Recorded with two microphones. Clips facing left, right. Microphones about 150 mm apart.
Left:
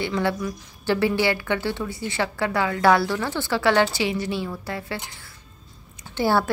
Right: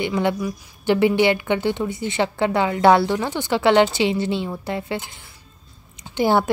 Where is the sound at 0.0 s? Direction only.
15° right (ahead or behind).